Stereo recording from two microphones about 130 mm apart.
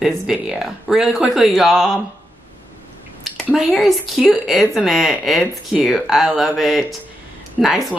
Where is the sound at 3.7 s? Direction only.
Centre (ahead or behind).